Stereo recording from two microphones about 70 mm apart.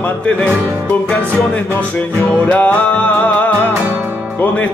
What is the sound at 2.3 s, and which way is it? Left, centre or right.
Music, left.